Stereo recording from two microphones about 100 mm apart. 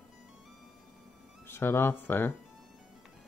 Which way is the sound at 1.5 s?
25° left (ahead or behind).